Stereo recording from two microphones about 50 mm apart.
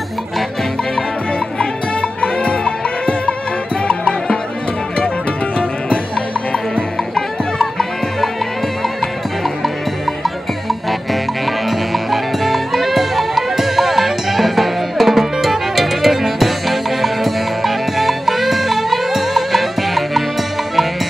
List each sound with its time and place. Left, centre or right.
1.6 s music: left
6.5 s music: centre
10.2 s music: centre